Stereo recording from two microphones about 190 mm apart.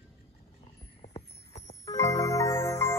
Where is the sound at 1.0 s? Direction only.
35° left (ahead or behind).